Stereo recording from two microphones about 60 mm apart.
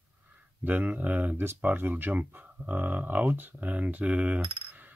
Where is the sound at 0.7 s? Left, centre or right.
Right.